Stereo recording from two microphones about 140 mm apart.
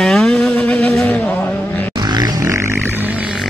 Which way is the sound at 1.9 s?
30° right (ahead or behind).